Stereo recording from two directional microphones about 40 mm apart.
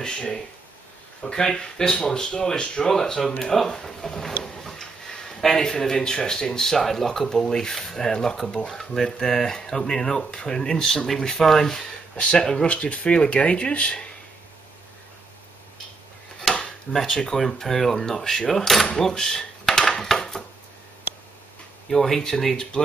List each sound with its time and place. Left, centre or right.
0.0 s speech: left
2.9 s speech: centre
5.4 s speech: centre
12.2 s speech: left
12.6 s speech: left
16.5 s dishes: centre
16.9 s speech: centre
18.9 s dishes: centre
21.9 s speech: centre